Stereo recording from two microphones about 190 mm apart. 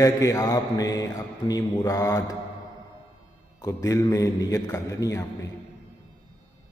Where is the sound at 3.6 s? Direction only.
20° left (ahead or behind).